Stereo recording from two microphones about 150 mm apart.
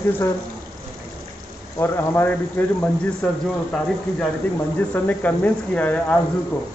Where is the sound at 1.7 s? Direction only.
15° left (ahead or behind).